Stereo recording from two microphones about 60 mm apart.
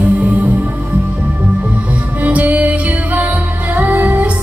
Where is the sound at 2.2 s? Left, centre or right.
Right.